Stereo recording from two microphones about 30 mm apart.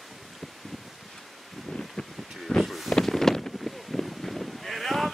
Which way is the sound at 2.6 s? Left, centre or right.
Centre.